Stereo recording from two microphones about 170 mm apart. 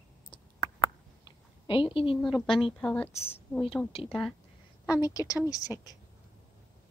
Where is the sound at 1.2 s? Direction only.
30° left (ahead or behind).